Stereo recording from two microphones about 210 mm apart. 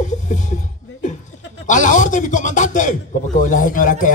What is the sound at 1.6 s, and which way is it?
A man's voice, 35° left (ahead or behind).